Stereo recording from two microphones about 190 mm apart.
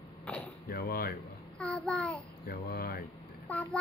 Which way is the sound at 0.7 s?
55° left (ahead or behind).